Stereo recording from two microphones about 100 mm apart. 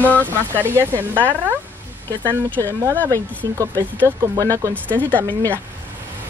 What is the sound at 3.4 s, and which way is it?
Speech, 35° right (ahead or behind).